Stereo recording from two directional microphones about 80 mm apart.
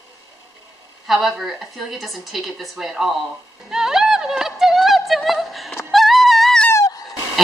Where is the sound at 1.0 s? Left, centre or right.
Centre.